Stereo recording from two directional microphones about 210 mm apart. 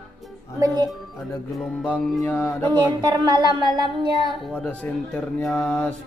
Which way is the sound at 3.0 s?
20° right (ahead or behind).